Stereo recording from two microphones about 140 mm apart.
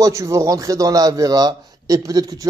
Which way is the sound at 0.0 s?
25° right (ahead or behind).